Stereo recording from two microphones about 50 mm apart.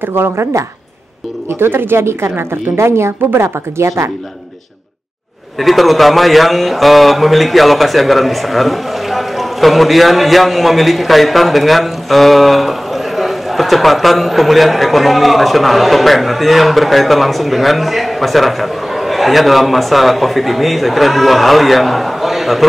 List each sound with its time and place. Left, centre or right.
0.0 s speech: right
1.5 s speech: right
5.6 s a man's voice: centre